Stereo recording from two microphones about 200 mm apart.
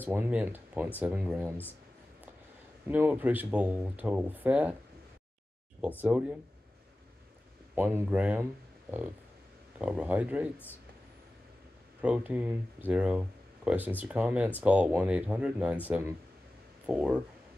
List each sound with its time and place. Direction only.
0.0 s speech: 10° right (ahead or behind)
2.9 s speech: 10° right (ahead or behind)
5.8 s speech: 10° right (ahead or behind)
7.7 s speech: 10° right (ahead or behind)
9.8 s speech: 5° right (ahead or behind)
12.0 s speech: 10° right (ahead or behind)
16.8 s speech: 5° right (ahead or behind)